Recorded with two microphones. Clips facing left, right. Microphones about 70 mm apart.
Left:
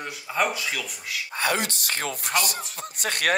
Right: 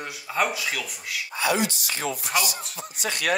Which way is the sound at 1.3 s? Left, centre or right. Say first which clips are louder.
Right 2 dB; left.